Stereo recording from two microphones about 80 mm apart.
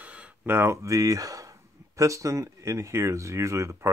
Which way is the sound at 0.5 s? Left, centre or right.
Right.